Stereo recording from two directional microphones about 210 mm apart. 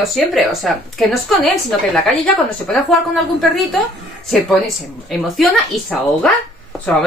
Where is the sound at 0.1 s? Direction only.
Centre (ahead or behind).